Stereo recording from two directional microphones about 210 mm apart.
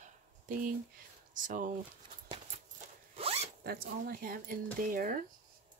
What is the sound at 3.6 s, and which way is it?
Speech, 45° right (ahead or behind).